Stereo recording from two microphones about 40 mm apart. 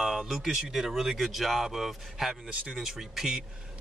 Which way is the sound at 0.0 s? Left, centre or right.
Centre.